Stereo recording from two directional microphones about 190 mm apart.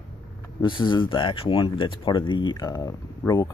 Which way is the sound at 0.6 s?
25° left (ahead or behind).